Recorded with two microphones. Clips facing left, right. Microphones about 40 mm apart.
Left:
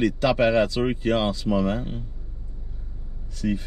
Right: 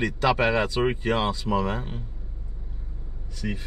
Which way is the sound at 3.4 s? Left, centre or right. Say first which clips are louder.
Left 6 dB; centre.